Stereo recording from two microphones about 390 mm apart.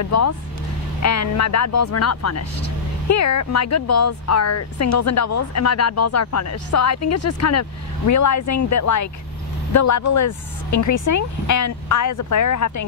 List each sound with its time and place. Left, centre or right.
0.0 s speech: left